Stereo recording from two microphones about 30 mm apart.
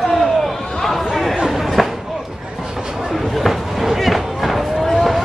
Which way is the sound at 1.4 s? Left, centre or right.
Centre.